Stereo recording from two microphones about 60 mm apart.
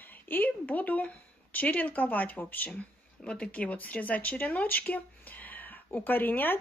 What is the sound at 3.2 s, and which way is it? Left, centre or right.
Speech, centre.